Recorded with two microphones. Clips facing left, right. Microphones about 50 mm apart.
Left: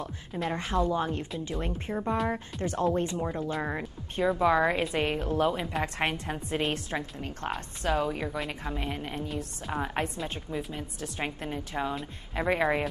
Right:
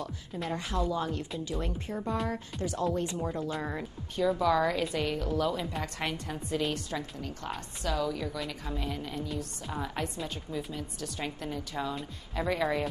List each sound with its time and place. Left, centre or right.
0.5 s a woman's voice: left
3.2 s a woman's voice: left